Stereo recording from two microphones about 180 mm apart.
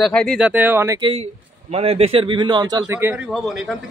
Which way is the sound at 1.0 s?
35° right (ahead or behind).